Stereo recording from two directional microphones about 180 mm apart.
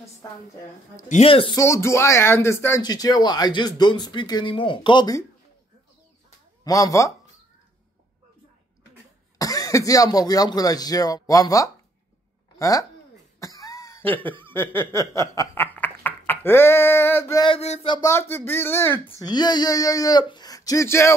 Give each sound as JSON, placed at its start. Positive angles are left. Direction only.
{"t": 1.0, "sound": "speech", "side_deg": 35}
{"t": 1.6, "sound": "speech", "side_deg": 15}
{"t": 6.6, "sound": "speech", "side_deg": 20}
{"t": 9.4, "sound": "speech", "side_deg": 20}
{"t": 13.4, "sound": "cough", "side_deg": 20}
{"t": 14.4, "sound": "snicker", "side_deg": 10}
{"t": 17.5, "sound": "speech", "side_deg": 35}
{"t": 17.9, "sound": "speech", "side_deg": 15}
{"t": 19.1, "sound": "speech", "side_deg": 25}